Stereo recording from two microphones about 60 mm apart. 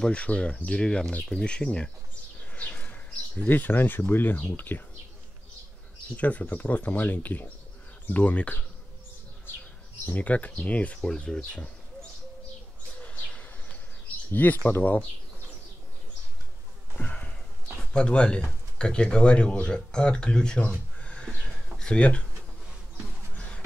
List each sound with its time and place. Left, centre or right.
0.0 s speech: centre
2.5 s bird: left
3.4 s speech: left
6.1 s speech: left
10.0 s speech: left
11.0 s speech: centre
13.0 s bird: left
14.3 s speech: left
16.9 s sniff: left
17.7 s speech: centre
21.0 s a sound: centre
21.7 s speech: centre
23.3 s a sound: centre